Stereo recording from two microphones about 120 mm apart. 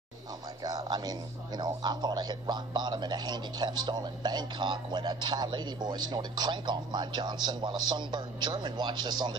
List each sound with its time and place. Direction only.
0.6 s speech: 35° right (ahead or behind)